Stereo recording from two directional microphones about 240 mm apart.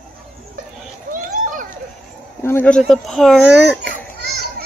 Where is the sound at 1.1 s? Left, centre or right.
Right.